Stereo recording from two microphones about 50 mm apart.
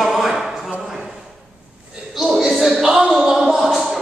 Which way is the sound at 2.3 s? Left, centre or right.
Centre.